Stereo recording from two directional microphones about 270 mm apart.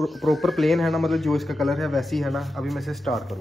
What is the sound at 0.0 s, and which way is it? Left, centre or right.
Speech, centre.